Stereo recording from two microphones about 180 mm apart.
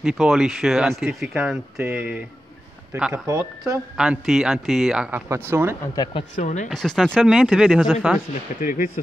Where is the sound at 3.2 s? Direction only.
20° right (ahead or behind).